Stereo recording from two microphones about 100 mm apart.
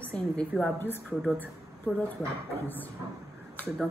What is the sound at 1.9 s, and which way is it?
Speech, 10° right (ahead or behind).